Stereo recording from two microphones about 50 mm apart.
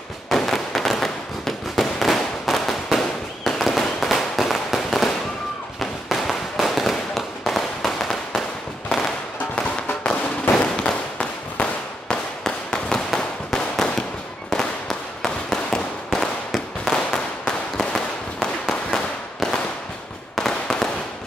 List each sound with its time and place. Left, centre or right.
0.3 s fireworks: centre
4.0 s firecracker: centre
5.8 s fireworks: centre
8.9 s firecracker: centre
10.5 s fireworks: centre